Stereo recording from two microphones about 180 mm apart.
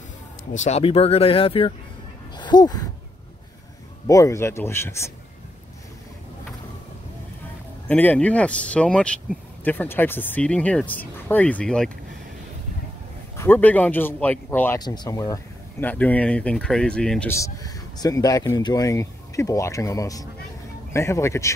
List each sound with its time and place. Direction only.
0.5 s speech: 40° left (ahead or behind)
2.3 s a sound: 25° left (ahead or behind)
4.1 s speech: 15° left (ahead or behind)
7.9 s speech: 10° left (ahead or behind)
13.4 s speech: 10° left (ahead or behind)
17.4 s speech: 20° left (ahead or behind)